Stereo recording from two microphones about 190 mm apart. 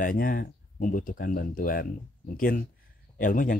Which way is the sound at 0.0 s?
45° left (ahead or behind).